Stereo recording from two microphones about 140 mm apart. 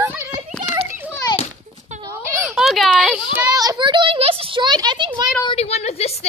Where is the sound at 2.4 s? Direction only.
Centre (ahead or behind).